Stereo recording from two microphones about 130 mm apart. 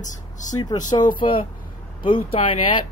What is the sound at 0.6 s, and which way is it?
Speech, 30° left (ahead or behind).